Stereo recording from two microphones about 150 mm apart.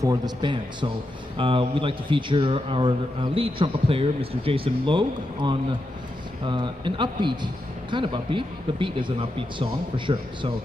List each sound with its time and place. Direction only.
0.0 s a man's voice: 25° right (ahead or behind)